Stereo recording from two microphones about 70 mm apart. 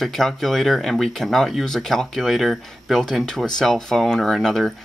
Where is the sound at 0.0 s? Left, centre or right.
Centre.